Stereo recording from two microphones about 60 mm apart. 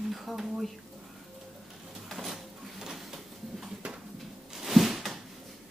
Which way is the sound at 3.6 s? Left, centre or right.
Centre.